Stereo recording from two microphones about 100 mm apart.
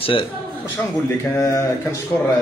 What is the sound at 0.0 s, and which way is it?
Speech, 60° left (ahead or behind).